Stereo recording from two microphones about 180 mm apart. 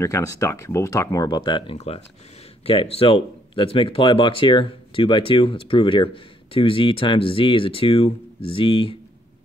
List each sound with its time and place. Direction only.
0.0 s speech: 20° left (ahead or behind)